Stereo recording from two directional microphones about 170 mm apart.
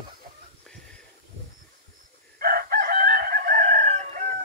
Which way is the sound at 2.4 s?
60° right (ahead or behind).